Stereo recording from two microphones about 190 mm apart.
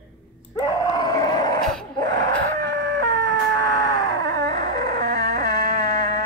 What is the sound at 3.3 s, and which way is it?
Whimper, 15° left (ahead or behind).